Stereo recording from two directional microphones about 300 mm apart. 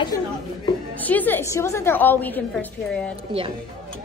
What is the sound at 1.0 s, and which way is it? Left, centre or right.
A woman's voice, centre.